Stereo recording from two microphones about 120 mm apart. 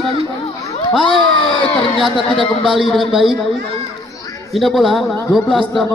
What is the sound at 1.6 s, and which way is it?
Speech, 45° right (ahead or behind).